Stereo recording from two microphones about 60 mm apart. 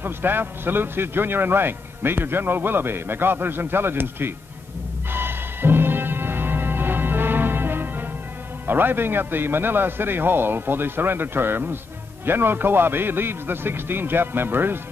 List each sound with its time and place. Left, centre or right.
0.0 s a man's voice: right
5.1 s music: right
8.6 s a man's voice: right